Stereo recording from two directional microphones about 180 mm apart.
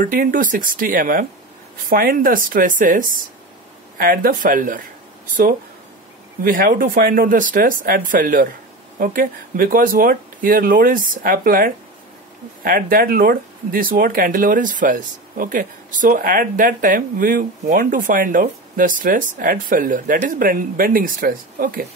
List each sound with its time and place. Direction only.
0.0 s speech: 50° right (ahead or behind)